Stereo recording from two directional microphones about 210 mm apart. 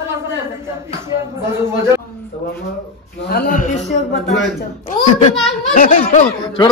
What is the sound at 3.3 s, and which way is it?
A man's voice, 40° left (ahead or behind).